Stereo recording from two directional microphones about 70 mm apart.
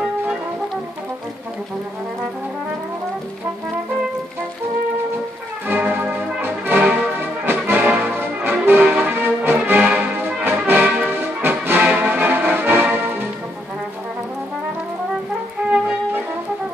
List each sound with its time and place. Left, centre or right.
5.7 s music: right
10.7 s brass instrument: right
11.1 s music: right